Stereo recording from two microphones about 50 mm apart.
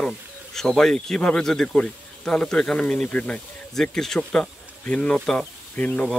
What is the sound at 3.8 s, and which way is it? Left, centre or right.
Speech, centre.